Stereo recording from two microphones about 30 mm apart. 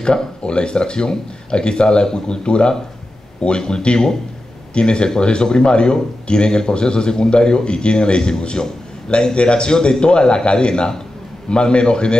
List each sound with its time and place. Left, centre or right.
0.0 s a man's voice: left